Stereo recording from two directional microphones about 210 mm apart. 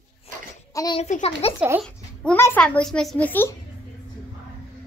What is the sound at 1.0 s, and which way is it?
Speech, 30° left (ahead or behind).